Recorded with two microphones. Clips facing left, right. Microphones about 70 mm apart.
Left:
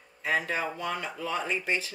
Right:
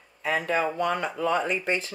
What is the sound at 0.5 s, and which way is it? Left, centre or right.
Speech, right.